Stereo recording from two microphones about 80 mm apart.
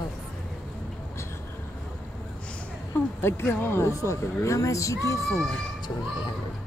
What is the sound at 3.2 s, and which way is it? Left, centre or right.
Speech, left.